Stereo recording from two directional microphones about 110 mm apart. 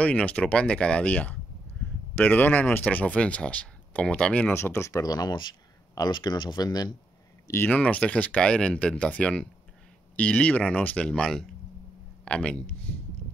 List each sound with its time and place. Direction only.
0.0 s speech: 10° left (ahead or behind)
4.6 s speech: 25° left (ahead or behind)
7.4 s speech: 20° left (ahead or behind)